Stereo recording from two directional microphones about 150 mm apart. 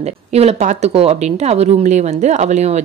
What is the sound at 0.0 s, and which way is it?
Speech, 45° right (ahead or behind).